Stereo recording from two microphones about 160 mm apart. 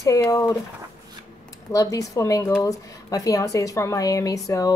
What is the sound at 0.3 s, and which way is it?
Speech, 20° left (ahead or behind).